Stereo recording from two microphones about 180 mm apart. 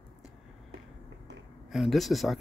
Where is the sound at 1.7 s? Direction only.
Centre (ahead or behind).